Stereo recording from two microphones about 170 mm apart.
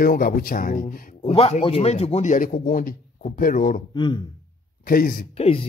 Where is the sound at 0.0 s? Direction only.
60° left (ahead or behind).